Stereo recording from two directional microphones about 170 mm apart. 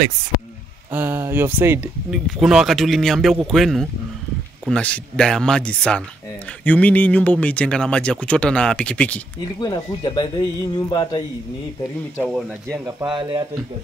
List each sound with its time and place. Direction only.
0.9 s speech: 15° right (ahead or behind)
2.0 s a man's voice: centre (ahead or behind)
9.6 s speech: 25° left (ahead or behind)
12.2 s a man's voice: 5° right (ahead or behind)
12.7 s speech: 20° right (ahead or behind)